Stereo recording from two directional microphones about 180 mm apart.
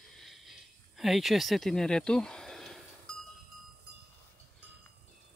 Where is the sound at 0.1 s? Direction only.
Centre (ahead or behind).